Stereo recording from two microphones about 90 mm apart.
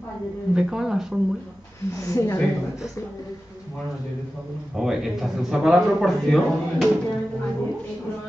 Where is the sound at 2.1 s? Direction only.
30° left (ahead or behind).